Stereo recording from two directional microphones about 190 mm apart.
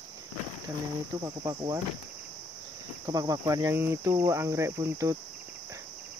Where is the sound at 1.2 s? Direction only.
20° right (ahead or behind).